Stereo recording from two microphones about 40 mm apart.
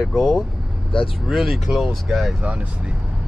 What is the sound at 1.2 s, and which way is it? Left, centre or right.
Speech, centre.